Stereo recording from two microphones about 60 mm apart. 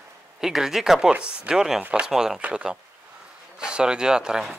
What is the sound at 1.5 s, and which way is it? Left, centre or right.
Speech, centre.